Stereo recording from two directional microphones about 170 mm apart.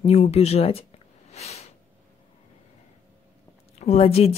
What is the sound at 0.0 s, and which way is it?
Speech, 35° left (ahead or behind).